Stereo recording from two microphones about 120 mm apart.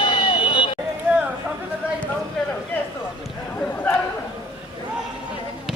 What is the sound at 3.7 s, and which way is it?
Chatter, 15° left (ahead or behind).